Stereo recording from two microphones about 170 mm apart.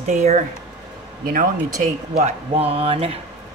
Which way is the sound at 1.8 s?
40° right (ahead or behind).